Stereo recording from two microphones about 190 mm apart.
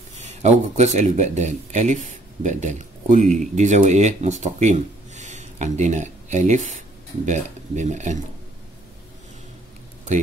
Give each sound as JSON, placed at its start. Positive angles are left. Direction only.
{"t": 0.2, "sound": "speech", "side_deg": -35}